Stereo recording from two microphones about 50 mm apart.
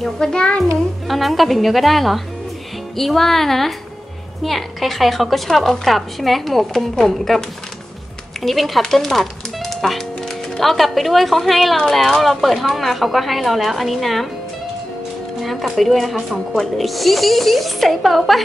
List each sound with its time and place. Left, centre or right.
0.0 s a child's voice: centre
1.0 s a woman's voice: centre
15.4 s a woman's voice: centre